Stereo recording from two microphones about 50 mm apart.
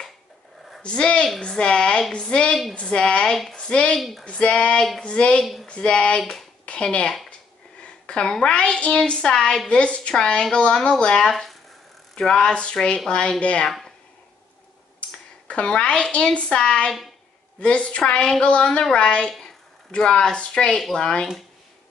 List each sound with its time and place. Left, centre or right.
0.8 s a woman's voice: left
5.4 s speech: centre
5.7 s a woman's voice: left
6.6 s a sound: left
7.8 s a woman's voice: centre
12.3 s a woman's voice: centre
13.7 s a sound: centre
15.0 s a woman's voice: centre